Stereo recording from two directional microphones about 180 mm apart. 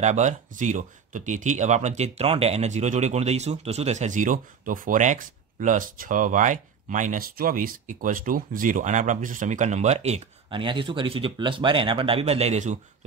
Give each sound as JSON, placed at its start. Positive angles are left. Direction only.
{"t": 0.0, "sound": "speech", "side_deg": -40}